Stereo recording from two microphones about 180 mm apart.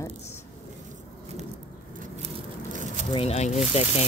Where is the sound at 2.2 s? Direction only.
40° right (ahead or behind).